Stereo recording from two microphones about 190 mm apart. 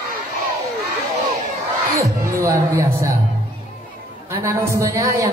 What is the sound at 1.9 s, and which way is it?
Music, 15° right (ahead or behind).